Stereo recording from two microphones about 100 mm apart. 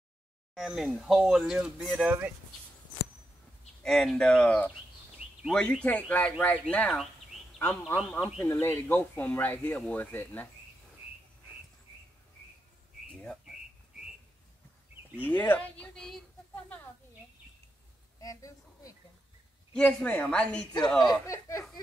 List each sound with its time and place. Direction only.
0.6 s speech: 5° right (ahead or behind)
2.0 s speech: 15° right (ahead or behind)
3.8 s speech: 5° left (ahead or behind)
8.4 s speech: 20° left (ahead or behind)
15.2 s speech: 20° left (ahead or behind)
18.2 s a sound: 35° left (ahead or behind)
19.7 s speech: 10° left (ahead or behind)
21.0 s speech: 35° left (ahead or behind)